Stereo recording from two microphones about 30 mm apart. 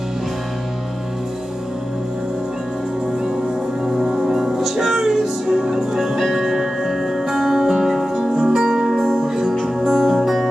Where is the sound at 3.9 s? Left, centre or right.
Right.